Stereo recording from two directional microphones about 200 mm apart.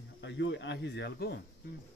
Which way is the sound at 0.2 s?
65° left (ahead or behind).